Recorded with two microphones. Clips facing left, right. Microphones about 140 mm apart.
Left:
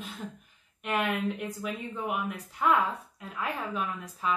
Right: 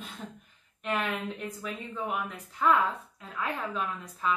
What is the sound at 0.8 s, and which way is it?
A woman's voice, 10° left (ahead or behind).